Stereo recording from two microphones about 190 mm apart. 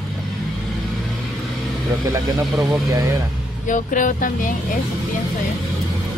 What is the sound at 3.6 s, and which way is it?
Speech, 45° left (ahead or behind).